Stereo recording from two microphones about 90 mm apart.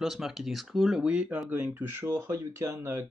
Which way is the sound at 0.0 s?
Centre (ahead or behind).